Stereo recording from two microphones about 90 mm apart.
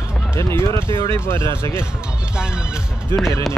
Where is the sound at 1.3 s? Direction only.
30° left (ahead or behind).